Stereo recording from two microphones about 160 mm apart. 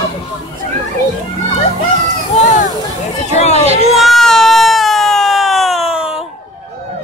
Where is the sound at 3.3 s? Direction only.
45° left (ahead or behind).